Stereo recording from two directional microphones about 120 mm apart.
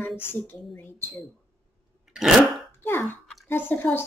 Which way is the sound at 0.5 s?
20° left (ahead or behind).